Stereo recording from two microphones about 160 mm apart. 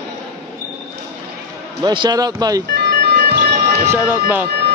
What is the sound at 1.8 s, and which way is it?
Speech, 25° right (ahead or behind).